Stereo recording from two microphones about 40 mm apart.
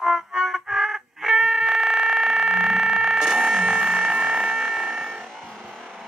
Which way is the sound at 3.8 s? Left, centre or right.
Centre.